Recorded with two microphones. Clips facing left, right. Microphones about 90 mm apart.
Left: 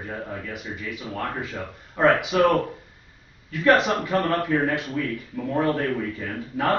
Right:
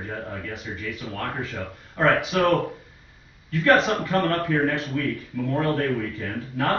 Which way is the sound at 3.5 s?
10° left (ahead or behind).